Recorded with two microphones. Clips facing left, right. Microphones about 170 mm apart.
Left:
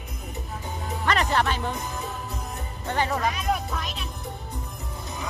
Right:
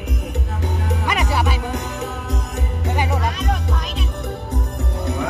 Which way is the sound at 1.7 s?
75° right (ahead or behind).